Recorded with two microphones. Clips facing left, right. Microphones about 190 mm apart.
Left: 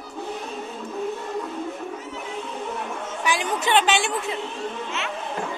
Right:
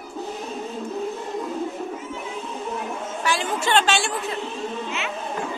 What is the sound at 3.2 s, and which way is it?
Speech, 15° left (ahead or behind).